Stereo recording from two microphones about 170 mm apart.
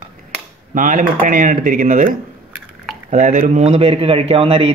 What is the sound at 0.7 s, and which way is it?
A man's voice, 50° right (ahead or behind).